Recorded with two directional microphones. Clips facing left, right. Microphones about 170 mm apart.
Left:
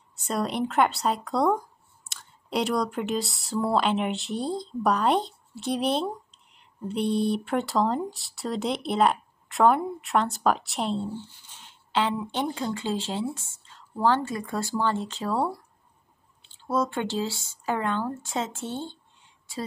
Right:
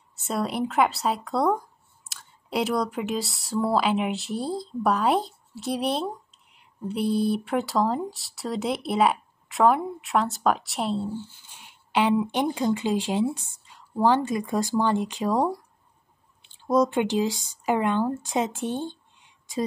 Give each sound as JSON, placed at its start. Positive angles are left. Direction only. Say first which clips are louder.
{"t": 0.1, "sound": "speech", "louder": "even", "side_deg": 0}
{"t": 11.5, "sound": "speech", "louder": "right 2 dB", "side_deg": -10}